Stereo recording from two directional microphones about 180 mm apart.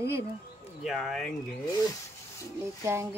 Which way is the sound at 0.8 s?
Centre (ahead or behind).